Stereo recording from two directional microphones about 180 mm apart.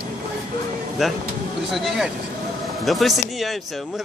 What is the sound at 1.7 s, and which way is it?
Speech, centre (ahead or behind).